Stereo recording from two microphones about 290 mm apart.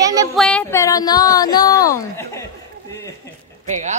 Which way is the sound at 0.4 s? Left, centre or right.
Centre.